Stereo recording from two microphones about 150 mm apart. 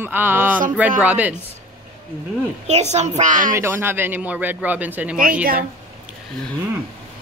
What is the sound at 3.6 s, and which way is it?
Speech, 15° right (ahead or behind).